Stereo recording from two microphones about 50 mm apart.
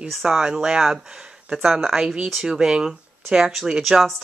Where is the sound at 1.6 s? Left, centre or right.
Centre.